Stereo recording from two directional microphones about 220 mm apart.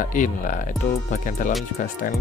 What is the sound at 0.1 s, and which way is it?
Speech, 35° left (ahead or behind).